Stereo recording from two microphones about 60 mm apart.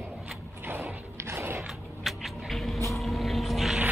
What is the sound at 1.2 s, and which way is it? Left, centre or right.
Biting, right.